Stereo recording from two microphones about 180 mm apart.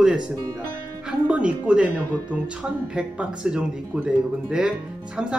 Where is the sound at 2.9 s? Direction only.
5° right (ahead or behind).